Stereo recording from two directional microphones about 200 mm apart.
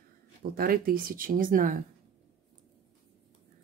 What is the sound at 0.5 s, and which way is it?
Speech, 45° right (ahead or behind).